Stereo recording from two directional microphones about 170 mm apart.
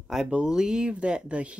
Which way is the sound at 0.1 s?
5° right (ahead or behind).